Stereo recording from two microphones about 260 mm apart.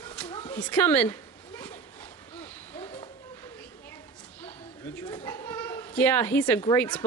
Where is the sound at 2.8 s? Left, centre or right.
Left.